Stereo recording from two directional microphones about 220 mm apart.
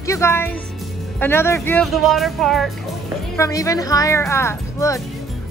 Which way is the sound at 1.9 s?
Centre (ahead or behind).